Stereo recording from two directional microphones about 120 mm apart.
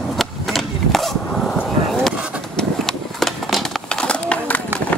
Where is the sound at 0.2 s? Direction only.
Centre (ahead or behind).